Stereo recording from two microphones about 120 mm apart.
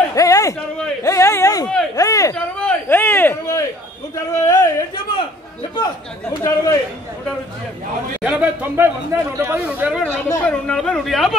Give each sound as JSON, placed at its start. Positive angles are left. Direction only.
{"t": 0.1, "sound": "a sound", "side_deg": 30}
{"t": 2.0, "sound": "speech", "side_deg": 30}
{"t": 2.3, "sound": "a man's voice", "side_deg": 10}
{"t": 5.1, "sound": "a man's voice", "side_deg": 45}
{"t": 6.4, "sound": "a man's voice", "side_deg": 30}
{"t": 8.2, "sound": "speech", "side_deg": -10}
{"t": 10.0, "sound": "speech", "side_deg": 15}